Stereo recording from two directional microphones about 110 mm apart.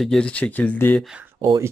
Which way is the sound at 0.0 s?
5° left (ahead or behind).